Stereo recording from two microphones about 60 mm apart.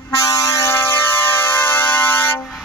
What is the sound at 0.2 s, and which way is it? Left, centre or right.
Air horn, left.